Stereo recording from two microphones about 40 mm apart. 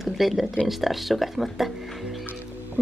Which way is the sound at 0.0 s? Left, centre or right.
Centre.